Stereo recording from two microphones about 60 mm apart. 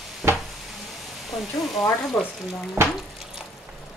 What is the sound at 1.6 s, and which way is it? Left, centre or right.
Speech, left.